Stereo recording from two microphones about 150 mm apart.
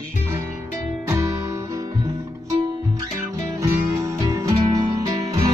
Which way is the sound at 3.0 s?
20° right (ahead or behind).